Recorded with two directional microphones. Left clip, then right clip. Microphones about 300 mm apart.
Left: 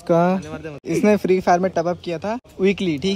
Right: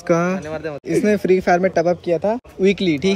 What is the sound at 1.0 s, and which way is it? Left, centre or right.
Speech, centre.